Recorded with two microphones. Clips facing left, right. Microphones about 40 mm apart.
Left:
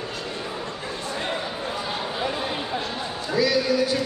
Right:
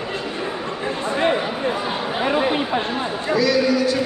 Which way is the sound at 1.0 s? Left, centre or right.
Right.